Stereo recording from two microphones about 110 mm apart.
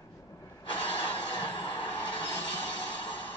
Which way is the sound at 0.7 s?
15° left (ahead or behind).